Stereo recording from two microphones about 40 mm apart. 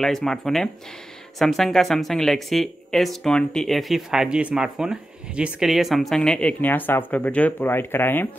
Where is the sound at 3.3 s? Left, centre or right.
Centre.